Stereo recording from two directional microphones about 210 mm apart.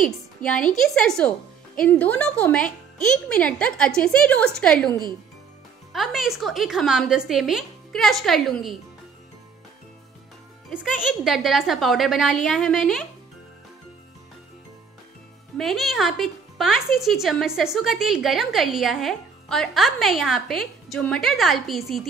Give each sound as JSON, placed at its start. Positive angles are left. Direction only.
{"t": 0.0, "sound": "a sound", "side_deg": 5}
{"t": 0.7, "sound": "speech", "side_deg": 0}
{"t": 4.8, "sound": "speech", "side_deg": -20}
{"t": 5.9, "sound": "speech", "side_deg": 0}
{"t": 10.8, "sound": "speech", "side_deg": -5}
{"t": 15.5, "sound": "speech", "side_deg": 0}